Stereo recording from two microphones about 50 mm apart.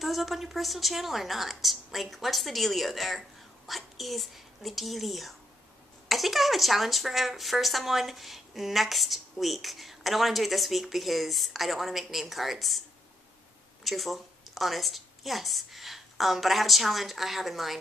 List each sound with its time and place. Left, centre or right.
0.0 s speech: centre
13.8 s speech: centre